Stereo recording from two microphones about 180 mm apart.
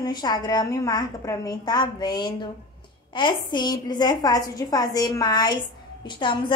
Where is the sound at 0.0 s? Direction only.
25° left (ahead or behind).